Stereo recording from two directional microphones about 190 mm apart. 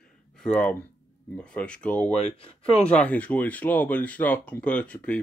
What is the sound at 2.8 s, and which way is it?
Speech, 5° left (ahead or behind).